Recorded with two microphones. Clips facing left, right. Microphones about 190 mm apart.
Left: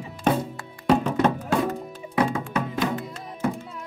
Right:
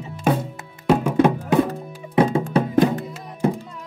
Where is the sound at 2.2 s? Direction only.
25° right (ahead or behind).